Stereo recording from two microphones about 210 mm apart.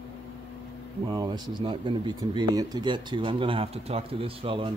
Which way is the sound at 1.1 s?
20° right (ahead or behind).